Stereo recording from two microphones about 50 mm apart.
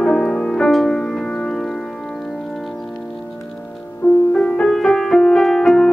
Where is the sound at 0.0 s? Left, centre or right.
Centre.